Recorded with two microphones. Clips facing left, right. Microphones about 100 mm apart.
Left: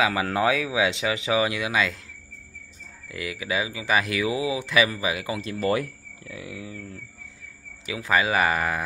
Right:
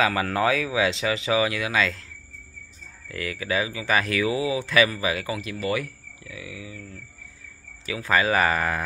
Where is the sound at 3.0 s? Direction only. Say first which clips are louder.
Right 1 dB; 15° left (ahead or behind).